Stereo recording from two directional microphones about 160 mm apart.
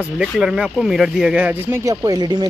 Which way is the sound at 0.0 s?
5° right (ahead or behind).